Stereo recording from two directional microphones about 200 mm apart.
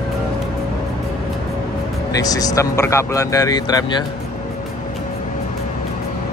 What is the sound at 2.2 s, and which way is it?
Speech, 20° left (ahead or behind).